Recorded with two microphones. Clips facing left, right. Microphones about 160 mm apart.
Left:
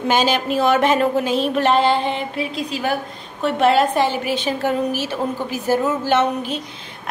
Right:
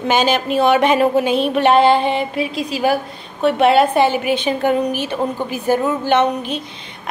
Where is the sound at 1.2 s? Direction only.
60° right (ahead or behind).